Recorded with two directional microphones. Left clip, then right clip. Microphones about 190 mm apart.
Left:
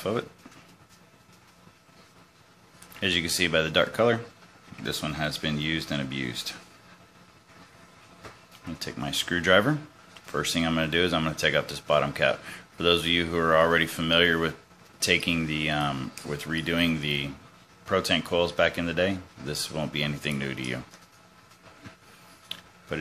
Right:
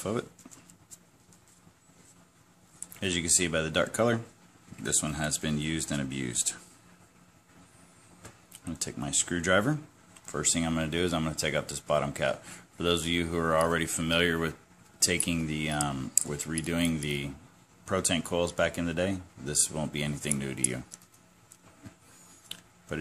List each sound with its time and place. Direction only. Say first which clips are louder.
0.0 s speech: left 4 dB; 15° right (ahead or behind)
3.0 s speech: left 4 dB; 20° right (ahead or behind)
8.6 s speech: left 3 dB; 25° right (ahead or behind)